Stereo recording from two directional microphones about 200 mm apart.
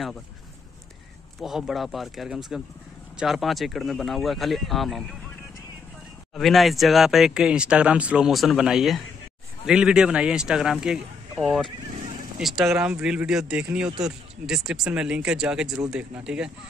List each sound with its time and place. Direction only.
1.4 s speech: centre (ahead or behind)
6.3 s speech: centre (ahead or behind)
11.9 s neigh: 40° right (ahead or behind)
12.4 s speech: centre (ahead or behind)